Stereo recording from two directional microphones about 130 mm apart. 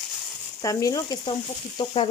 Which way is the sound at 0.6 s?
25° left (ahead or behind).